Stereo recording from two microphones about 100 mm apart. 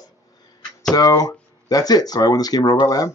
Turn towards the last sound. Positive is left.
turn(degrees=35)  # may be behind; listen again after turning